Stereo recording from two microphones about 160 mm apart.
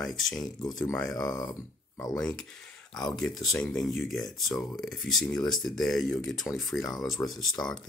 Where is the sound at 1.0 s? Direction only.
25° left (ahead or behind).